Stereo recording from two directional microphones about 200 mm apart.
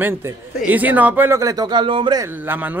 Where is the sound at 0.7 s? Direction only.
10° right (ahead or behind).